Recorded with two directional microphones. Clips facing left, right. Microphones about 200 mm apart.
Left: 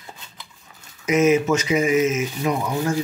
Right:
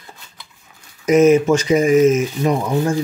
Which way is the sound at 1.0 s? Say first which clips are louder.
Right 6 dB; 35° right (ahead or behind).